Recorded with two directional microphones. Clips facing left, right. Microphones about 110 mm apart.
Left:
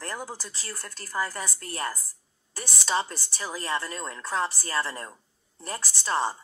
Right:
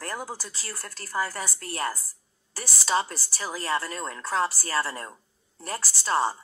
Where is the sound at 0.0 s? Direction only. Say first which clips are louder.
Right 1 dB; 35° right (ahead or behind).